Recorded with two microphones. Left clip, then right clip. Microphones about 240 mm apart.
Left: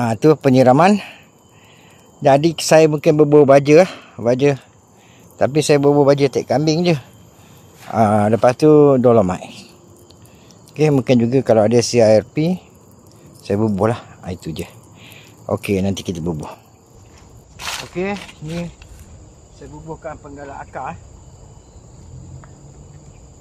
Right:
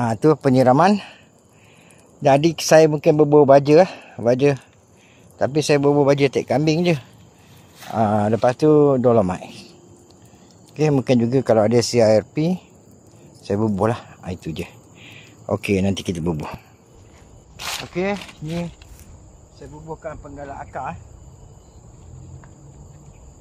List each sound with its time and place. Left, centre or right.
0.0 s speech: centre
2.2 s speech: centre
10.7 s speech: centre
17.9 s speech: right
18.2 s cricket: right